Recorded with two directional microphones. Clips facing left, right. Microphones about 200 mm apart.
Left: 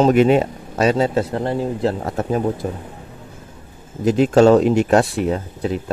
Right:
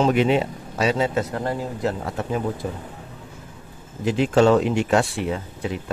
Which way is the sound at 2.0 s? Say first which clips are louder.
Left 5 dB; 45° left (ahead or behind).